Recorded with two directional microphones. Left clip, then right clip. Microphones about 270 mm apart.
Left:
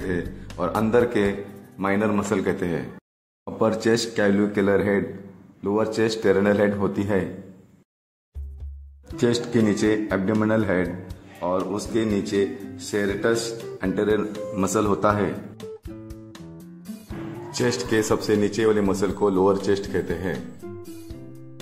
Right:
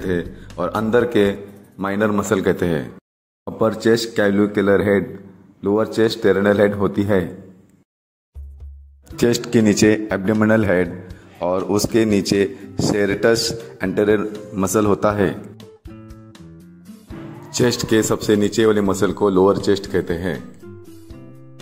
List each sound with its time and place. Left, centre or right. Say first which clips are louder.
0.0 s speech: right 5 dB; centre
9.1 s speech: right 5 dB; right
15.5 s music: left 4 dB; centre
17.5 s speech: right 6 dB; centre
20.3 s music: even; centre